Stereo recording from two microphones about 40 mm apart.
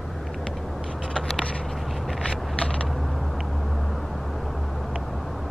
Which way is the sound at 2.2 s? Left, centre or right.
Left.